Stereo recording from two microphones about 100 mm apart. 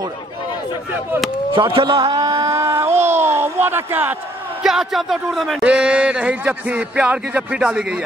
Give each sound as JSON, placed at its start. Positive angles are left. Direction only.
{"t": 1.5, "sound": "a sound", "side_deg": -55}
{"t": 4.6, "sound": "speech", "side_deg": -5}
{"t": 5.6, "sound": "a man's voice", "side_deg": -10}